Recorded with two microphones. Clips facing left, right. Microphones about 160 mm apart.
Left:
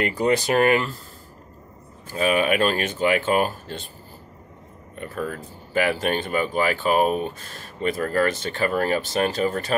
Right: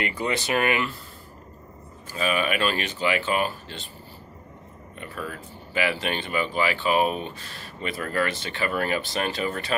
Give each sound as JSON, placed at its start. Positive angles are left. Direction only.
{"t": 0.0, "sound": "speech", "side_deg": 45}
{"t": 2.0, "sound": "speech", "side_deg": 50}
{"t": 4.9, "sound": "speech", "side_deg": 45}